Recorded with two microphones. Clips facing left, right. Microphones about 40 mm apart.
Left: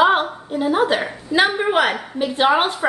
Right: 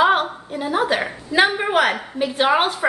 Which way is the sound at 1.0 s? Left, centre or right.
Centre.